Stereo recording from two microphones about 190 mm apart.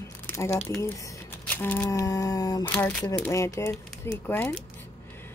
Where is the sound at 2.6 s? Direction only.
10° left (ahead or behind).